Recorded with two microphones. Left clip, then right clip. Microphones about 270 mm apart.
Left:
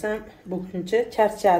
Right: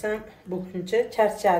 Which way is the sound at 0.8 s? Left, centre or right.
Left.